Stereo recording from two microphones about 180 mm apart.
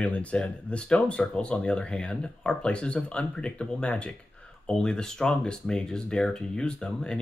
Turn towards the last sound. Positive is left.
turn(degrees=5)  # may be behind; listen again after turning